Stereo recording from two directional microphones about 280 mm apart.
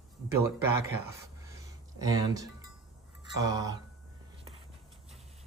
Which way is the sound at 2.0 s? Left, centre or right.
Centre.